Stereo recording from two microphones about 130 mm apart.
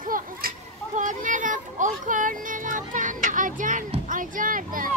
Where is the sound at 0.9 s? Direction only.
75° right (ahead or behind).